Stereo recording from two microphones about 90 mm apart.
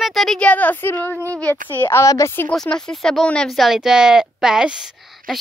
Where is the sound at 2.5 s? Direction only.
10° left (ahead or behind).